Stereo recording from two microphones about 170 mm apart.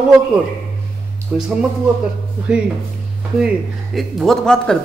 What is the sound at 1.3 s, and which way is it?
Speech, 5° right (ahead or behind).